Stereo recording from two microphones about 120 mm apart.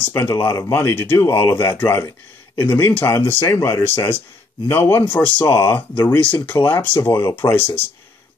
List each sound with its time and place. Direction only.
0.0 s speech: 25° left (ahead or behind)